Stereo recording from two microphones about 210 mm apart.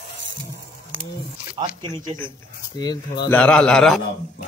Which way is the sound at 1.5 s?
25° right (ahead or behind).